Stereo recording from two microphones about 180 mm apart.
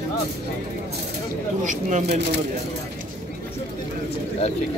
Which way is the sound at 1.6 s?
45° right (ahead or behind).